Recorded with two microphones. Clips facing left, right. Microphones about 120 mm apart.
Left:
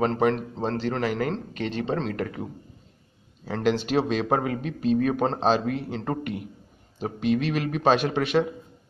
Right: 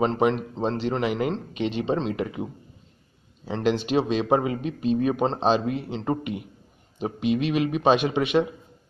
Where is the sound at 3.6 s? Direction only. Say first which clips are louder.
Even; centre (ahead or behind).